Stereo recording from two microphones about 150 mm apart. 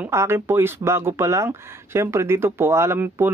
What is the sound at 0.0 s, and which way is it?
Speech, 15° right (ahead or behind).